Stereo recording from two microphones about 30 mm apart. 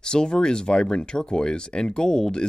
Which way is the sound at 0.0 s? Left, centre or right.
Left.